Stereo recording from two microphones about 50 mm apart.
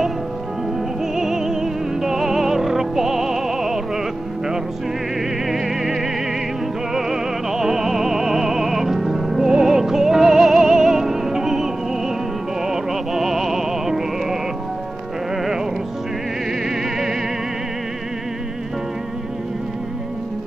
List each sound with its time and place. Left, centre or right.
1.1 s music: centre
5.5 s music: centre
16.6 s music: centre